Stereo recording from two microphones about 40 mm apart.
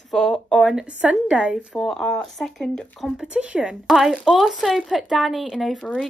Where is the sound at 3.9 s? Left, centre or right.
Centre.